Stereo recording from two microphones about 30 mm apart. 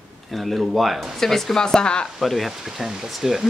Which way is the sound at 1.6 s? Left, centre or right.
Left.